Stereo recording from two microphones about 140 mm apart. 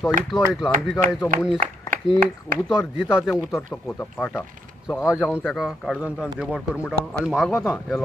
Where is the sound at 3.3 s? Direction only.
20° left (ahead or behind).